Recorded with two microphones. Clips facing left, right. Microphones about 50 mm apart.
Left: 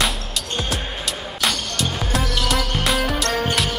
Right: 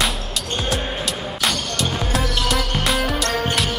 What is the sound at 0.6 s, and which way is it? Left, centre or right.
Music, centre.